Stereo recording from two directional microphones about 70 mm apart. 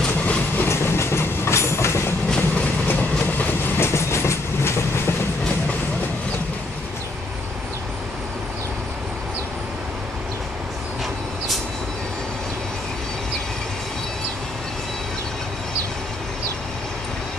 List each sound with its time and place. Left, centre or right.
0.2 s train: left
0.7 s train: left
2.5 s train: left